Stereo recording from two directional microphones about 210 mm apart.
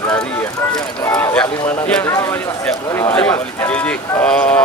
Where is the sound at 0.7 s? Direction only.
10° left (ahead or behind).